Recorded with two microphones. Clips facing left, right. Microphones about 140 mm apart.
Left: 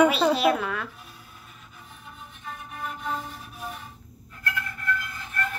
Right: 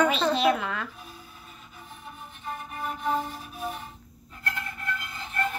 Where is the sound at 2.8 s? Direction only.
15° right (ahead or behind).